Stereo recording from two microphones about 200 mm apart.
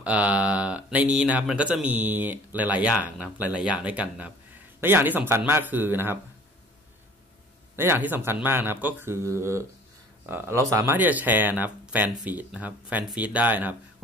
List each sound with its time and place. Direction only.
0.0 s speech: 5° right (ahead or behind)
7.7 s speech: 10° right (ahead or behind)